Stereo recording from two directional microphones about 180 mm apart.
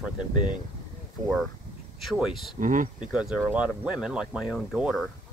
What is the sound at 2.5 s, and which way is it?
Speech, 45° right (ahead or behind).